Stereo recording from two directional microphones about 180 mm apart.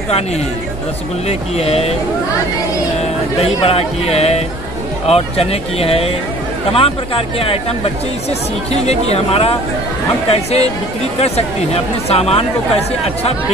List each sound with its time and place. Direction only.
1.2 s speech: 35° left (ahead or behind)
3.3 s speech: 35° left (ahead or behind)